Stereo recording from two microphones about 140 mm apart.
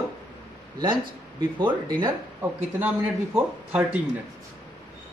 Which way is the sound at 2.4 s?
15° right (ahead or behind).